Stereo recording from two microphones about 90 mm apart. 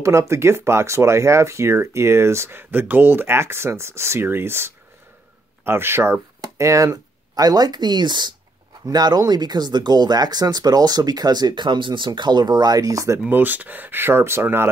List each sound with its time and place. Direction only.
0.0 s speech: 35° right (ahead or behind)
13.3 s speech: 20° right (ahead or behind)